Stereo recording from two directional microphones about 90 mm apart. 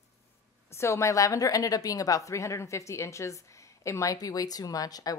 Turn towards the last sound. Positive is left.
turn(degrees=45)  # may be behind; listen again after turning